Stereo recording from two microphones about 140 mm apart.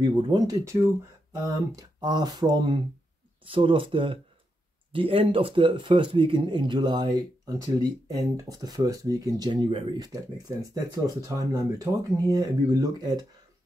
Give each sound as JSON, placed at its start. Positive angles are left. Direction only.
{"t": 0.0, "sound": "speech", "side_deg": -30}